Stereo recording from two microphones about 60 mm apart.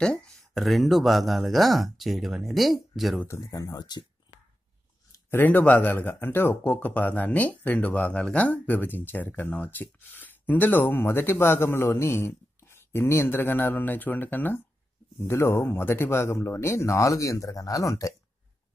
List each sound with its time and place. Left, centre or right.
0.0 s a sound: centre
0.6 s speech: centre
3.4 s speech: left
5.3 s speech: left